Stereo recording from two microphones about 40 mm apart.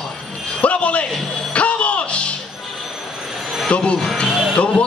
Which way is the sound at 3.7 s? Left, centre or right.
Left.